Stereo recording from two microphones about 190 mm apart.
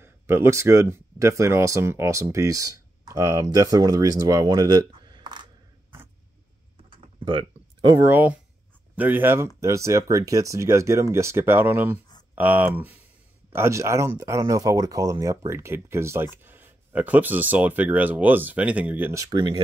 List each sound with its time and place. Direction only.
0.0 s speech: 15° right (ahead or behind)
7.2 s speech: 25° right (ahead or behind); by 19.2 s 10° right (ahead or behind)
19.3 s speech: 25° right (ahead or behind)